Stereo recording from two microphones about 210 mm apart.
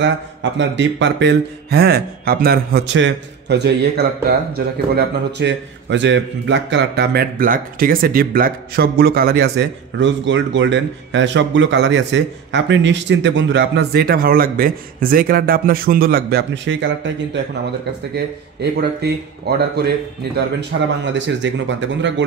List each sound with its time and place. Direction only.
0.0 s a man's voice: 60° right (ahead or behind)
21.0 s speech: 60° right (ahead or behind)